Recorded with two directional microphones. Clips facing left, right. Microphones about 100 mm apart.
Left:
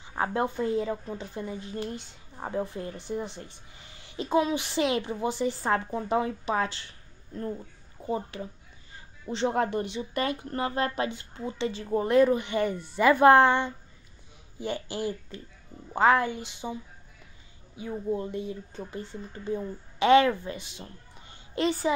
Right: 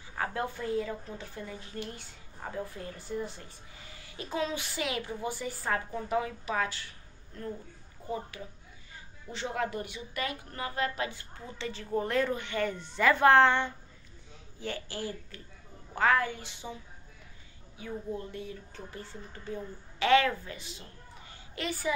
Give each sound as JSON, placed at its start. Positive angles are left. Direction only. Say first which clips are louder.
{"t": 0.0, "sound": "a woman's voice", "louder": "left 6 dB", "side_deg": 25}
{"t": 8.1, "sound": "a woman's voice", "louder": "left 6 dB", "side_deg": 25}
{"t": 9.5, "sound": "speech", "louder": "left 4 dB", "side_deg": 35}
{"t": 11.1, "sound": "a woman's voice", "louder": "left 8 dB", "side_deg": 20}
{"t": 17.7, "sound": "a woman's voice", "louder": "left 6 dB", "side_deg": 20}
{"t": 21.3, "sound": "a sound", "louder": "left 9 dB", "side_deg": 25}